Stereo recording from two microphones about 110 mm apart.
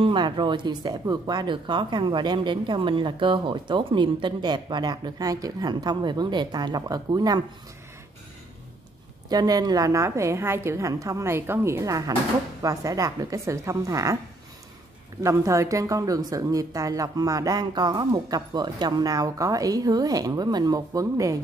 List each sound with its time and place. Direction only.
0.0 s speech: 45° right (ahead or behind)
9.3 s a woman's voice: 40° right (ahead or behind)
15.2 s a woman's voice: 30° right (ahead or behind)